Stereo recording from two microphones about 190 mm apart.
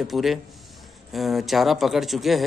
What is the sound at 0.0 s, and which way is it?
Speech, centre (ahead or behind).